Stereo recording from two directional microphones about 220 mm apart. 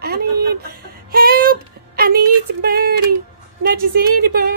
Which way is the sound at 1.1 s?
40° right (ahead or behind).